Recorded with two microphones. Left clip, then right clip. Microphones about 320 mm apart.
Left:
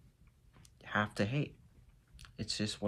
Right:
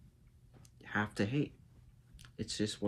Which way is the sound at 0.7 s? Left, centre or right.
Centre.